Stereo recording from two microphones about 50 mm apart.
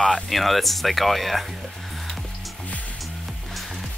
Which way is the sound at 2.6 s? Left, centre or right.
Left.